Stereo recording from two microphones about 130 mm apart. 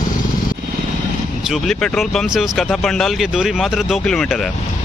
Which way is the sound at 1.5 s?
5° left (ahead or behind).